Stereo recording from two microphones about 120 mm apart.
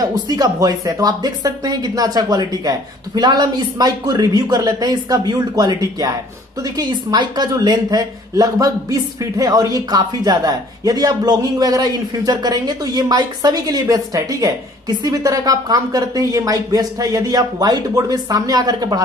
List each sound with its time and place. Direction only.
0.0 s speech: 30° right (ahead or behind)